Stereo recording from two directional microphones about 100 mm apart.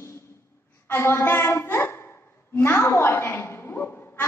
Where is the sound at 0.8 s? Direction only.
25° left (ahead or behind).